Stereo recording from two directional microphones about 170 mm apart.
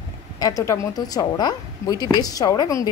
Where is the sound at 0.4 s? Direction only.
20° left (ahead or behind).